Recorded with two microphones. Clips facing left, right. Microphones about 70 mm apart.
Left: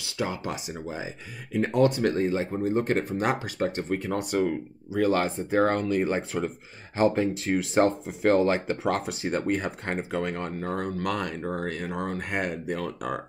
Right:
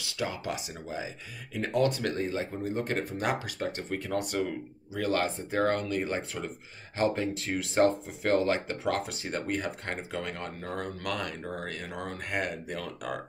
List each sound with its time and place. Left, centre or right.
0.2 s speech: left